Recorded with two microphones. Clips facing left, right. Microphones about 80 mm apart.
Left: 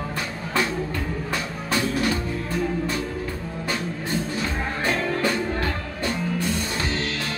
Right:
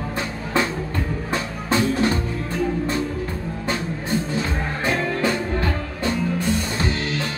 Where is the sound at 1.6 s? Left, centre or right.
Right.